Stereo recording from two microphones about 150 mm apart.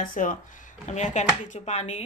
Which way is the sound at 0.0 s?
65° left (ahead or behind).